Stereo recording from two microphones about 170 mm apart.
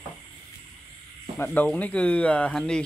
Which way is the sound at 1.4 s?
10° left (ahead or behind).